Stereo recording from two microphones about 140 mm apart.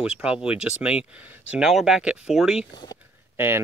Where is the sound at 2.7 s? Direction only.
35° left (ahead or behind).